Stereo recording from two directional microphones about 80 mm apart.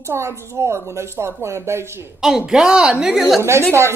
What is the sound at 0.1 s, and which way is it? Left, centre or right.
A woman's voice, right.